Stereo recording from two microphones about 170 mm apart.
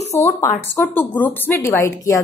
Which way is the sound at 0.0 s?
40° left (ahead or behind).